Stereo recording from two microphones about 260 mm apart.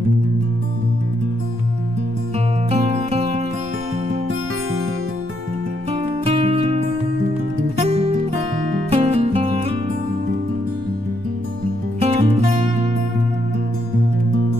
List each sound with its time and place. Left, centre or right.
2.7 s music: right
5.9 s music: right
12.0 s music: right